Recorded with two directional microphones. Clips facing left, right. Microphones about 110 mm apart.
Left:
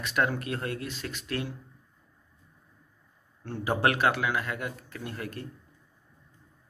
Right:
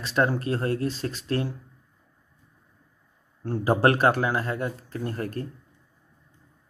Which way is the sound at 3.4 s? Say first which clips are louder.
Right 5 dB; 35° right (ahead or behind).